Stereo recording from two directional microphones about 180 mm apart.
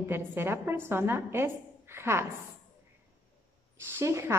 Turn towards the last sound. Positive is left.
turn(degrees=-15)  # may be behind; listen again after turning